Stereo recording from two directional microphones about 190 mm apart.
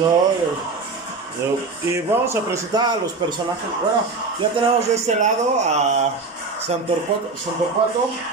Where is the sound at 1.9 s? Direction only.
15° right (ahead or behind).